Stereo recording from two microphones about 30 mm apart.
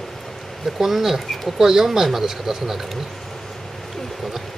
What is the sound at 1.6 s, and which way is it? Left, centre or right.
Speech, centre.